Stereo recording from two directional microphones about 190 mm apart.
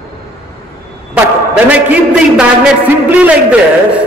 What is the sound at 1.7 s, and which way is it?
A man's voice, 5° right (ahead or behind).